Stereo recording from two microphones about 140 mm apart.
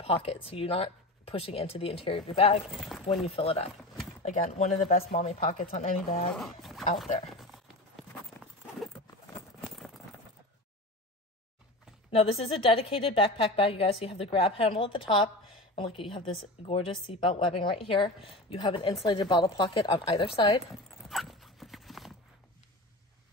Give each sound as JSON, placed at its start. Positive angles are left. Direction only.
{"t": 0.0, "sound": "speech", "side_deg": 45}
{"t": 2.9, "sound": "speech", "side_deg": 0}
{"t": 3.3, "sound": "speech", "side_deg": 45}
{"t": 4.2, "sound": "speech", "side_deg": 60}
{"t": 6.3, "sound": "speech", "side_deg": 0}
{"t": 7.0, "sound": "a sound", "side_deg": 0}
{"t": 9.6, "sound": "a sound", "side_deg": 0}
{"t": 12.1, "sound": "a woman's voice", "side_deg": 45}
{"t": 20.9, "sound": "clip-clop", "side_deg": 0}